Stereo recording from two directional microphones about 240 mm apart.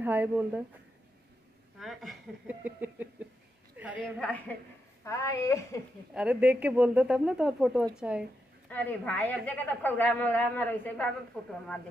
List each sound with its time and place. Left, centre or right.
0.0 s a woman's voice: centre
1.8 s a woman's voice: centre
5.0 s a woman's voice: centre
6.1 s a woman's voice: centre